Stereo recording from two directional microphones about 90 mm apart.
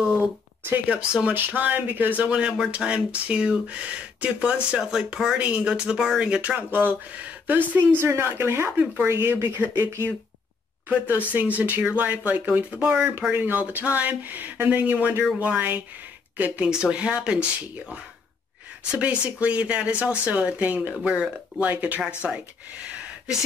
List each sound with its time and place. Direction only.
0.8 s speech: 10° right (ahead or behind)